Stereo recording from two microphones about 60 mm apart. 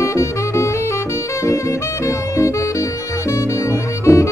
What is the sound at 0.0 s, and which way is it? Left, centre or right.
Saxophone, left.